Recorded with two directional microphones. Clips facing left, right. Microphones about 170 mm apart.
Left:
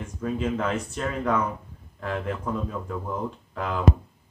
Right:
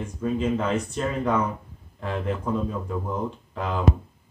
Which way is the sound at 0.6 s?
15° right (ahead or behind).